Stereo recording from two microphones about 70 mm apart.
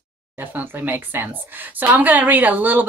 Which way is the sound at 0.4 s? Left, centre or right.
Right.